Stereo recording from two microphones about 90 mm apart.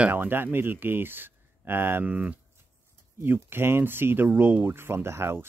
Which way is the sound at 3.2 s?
25° right (ahead or behind).